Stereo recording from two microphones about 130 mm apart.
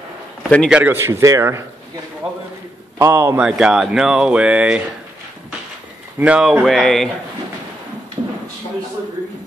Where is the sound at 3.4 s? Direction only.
5° right (ahead or behind).